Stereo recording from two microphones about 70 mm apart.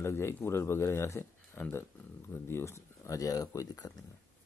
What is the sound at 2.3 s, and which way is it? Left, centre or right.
Speech, left.